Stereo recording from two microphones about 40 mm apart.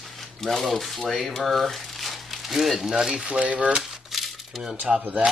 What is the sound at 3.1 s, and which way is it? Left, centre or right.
Speech, right.